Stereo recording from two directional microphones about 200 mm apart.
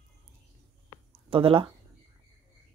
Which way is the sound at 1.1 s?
25° right (ahead or behind).